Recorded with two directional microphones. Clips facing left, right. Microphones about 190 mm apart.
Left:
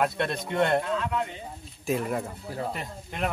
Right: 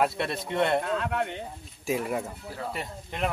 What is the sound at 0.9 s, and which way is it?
Speech, 60° right (ahead or behind).